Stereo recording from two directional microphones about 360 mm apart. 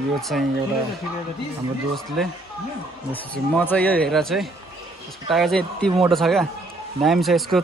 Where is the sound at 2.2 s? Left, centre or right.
Centre.